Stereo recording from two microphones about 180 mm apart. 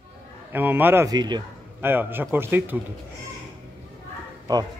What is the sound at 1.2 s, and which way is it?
Speech, 25° right (ahead or behind).